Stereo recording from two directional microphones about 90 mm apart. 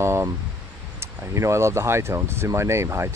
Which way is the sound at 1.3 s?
30° right (ahead or behind).